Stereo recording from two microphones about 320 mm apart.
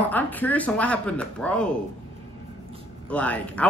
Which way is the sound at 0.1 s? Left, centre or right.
Centre.